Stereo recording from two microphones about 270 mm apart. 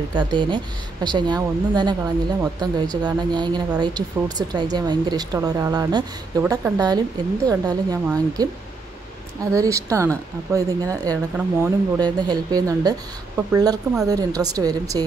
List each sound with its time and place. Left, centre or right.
0.1 s speech: centre